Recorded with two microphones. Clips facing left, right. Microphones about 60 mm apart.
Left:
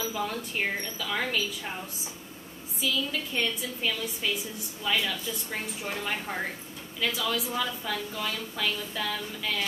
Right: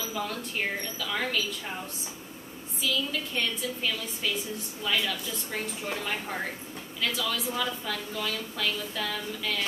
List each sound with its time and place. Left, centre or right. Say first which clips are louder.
0.1 s a woman's voice: left 1 dB; centre
2.8 s a woman's voice: even; centre